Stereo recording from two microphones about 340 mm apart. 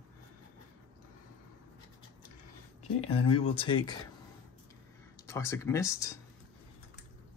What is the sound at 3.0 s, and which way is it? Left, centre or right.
Speech, centre.